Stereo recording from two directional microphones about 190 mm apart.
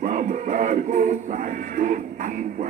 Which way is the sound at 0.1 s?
45° right (ahead or behind).